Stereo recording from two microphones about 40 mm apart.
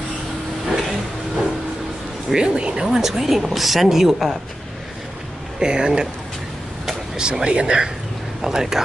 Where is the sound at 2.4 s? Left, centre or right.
Right.